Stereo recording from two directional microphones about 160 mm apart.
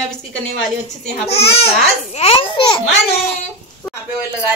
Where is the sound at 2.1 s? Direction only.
40° left (ahead or behind).